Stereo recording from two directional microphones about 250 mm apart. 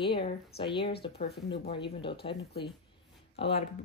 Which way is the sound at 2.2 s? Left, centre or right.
Left.